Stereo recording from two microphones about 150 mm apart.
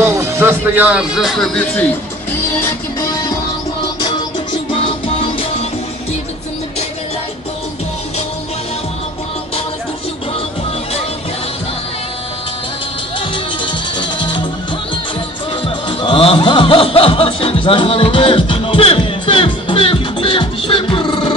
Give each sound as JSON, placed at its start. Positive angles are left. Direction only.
{"t": 0.0, "sound": "speech", "side_deg": -20}
{"t": 5.0, "sound": "music", "side_deg": 40}
{"t": 13.3, "sound": "music", "side_deg": 30}
{"t": 15.6, "sound": "music", "side_deg": 35}